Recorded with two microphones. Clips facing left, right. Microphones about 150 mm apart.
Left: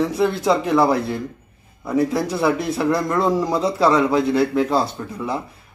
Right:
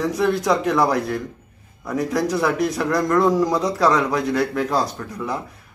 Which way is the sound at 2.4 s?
30° left (ahead or behind).